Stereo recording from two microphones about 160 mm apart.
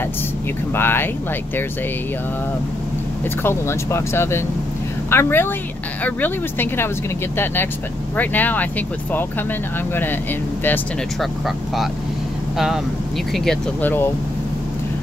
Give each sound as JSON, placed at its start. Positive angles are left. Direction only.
{"t": 0.7, "sound": "speech", "side_deg": 15}
{"t": 3.4, "sound": "speech", "side_deg": 15}
{"t": 8.2, "sound": "speech", "side_deg": 10}
{"t": 11.1, "sound": "speech", "side_deg": 0}
{"t": 13.3, "sound": "speech", "side_deg": 5}